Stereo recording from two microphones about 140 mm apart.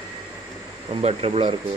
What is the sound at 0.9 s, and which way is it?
Speech, 45° right (ahead or behind).